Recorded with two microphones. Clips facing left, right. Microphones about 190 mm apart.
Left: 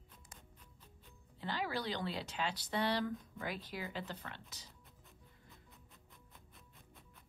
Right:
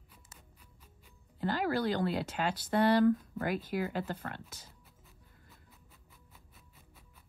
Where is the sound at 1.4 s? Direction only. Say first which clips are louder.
Right 8 dB; 45° right (ahead or behind).